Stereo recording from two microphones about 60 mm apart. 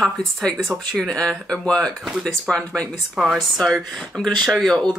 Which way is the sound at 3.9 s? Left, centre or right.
Centre.